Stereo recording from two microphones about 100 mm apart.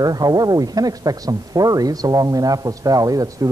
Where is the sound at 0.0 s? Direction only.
40° right (ahead or behind).